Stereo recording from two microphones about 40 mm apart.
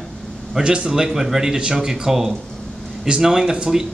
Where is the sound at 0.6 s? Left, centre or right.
Right.